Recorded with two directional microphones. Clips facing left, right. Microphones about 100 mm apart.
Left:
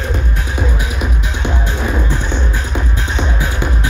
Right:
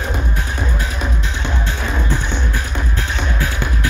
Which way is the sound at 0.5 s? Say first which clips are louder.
Left 3 dB; 10° left (ahead or behind).